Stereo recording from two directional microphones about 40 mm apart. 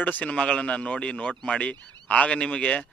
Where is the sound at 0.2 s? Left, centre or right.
Left.